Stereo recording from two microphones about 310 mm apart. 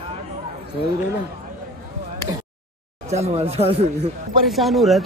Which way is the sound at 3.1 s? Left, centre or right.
Right.